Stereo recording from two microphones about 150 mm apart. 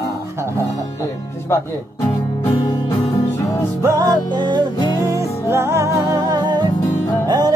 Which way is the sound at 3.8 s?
25° right (ahead or behind).